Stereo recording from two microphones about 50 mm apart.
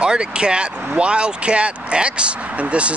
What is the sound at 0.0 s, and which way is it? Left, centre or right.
Speech, centre.